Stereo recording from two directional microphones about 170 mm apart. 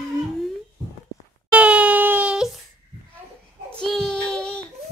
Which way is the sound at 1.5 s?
5° right (ahead or behind).